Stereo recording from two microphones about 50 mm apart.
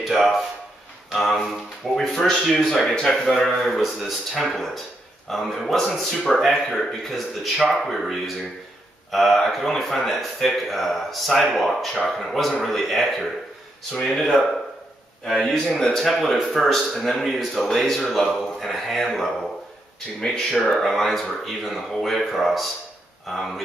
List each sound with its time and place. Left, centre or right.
0.0 s speech: centre
20.7 s speech: centre